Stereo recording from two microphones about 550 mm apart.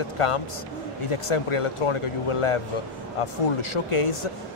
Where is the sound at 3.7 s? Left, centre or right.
Left.